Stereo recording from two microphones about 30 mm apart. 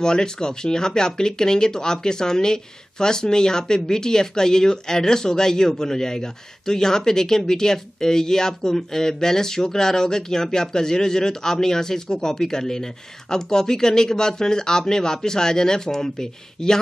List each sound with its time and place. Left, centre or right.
0.0 s speech: left